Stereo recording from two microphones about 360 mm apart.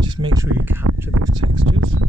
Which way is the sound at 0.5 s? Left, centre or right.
Right.